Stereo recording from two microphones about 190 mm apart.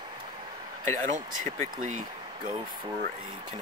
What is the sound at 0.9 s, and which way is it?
Speech, 40° right (ahead or behind).